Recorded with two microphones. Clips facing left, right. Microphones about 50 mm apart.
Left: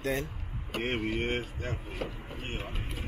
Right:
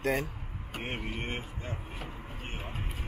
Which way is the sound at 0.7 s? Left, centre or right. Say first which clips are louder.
Left 6 dB; left.